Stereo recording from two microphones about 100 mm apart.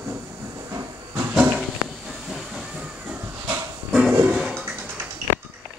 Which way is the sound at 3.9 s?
5° right (ahead or behind).